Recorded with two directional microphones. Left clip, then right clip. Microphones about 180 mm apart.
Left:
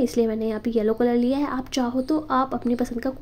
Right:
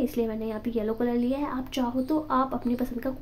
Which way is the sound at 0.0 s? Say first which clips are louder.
Left 6 dB; 25° left (ahead or behind).